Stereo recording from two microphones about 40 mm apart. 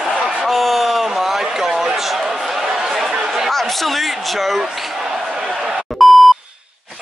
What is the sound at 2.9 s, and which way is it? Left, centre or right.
Chatter, centre.